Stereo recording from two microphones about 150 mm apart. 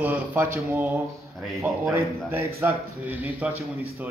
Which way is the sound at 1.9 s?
15° right (ahead or behind).